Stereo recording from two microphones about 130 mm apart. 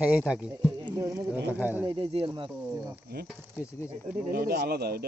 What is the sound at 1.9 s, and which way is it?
Speech, 40° right (ahead or behind).